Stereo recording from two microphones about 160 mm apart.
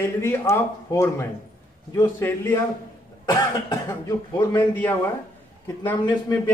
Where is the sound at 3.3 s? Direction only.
30° left (ahead or behind).